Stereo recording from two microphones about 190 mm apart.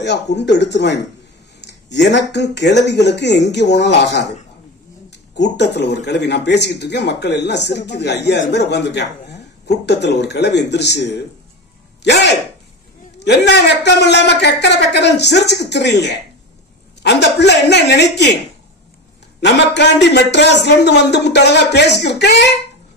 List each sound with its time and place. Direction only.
0.0 s speech: 65° left (ahead or behind)
5.3 s speech: 65° left (ahead or behind)
19.4 s speech: 65° left (ahead or behind)